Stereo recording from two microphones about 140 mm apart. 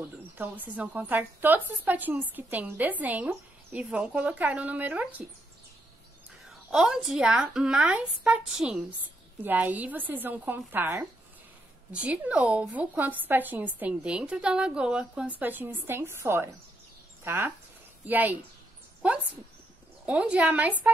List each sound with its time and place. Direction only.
0.4 s a woman's voice: 15° right (ahead or behind)
6.7 s a woman's voice: 5° right (ahead or behind)
20.1 s a woman's voice: 10° right (ahead or behind)